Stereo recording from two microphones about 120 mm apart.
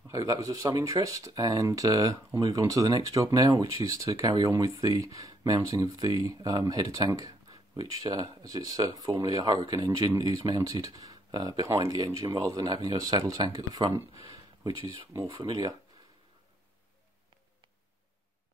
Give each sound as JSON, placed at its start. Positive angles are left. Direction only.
{"t": 0.1, "sound": "speech", "side_deg": -25}
{"t": 15.2, "sound": "speech", "side_deg": -35}